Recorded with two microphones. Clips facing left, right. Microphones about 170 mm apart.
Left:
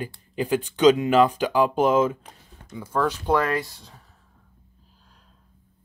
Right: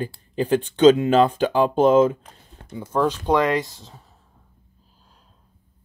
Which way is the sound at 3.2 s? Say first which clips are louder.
Right 3 dB; 15° right (ahead or behind).